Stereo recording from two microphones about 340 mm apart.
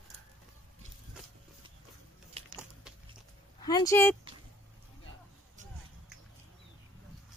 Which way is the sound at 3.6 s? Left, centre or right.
Centre.